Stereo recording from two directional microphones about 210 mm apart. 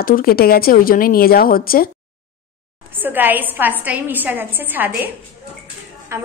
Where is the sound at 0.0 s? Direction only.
45° left (ahead or behind).